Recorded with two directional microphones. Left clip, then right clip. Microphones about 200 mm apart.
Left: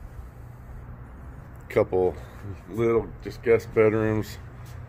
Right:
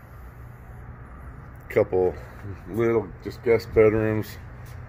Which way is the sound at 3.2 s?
35° right (ahead or behind).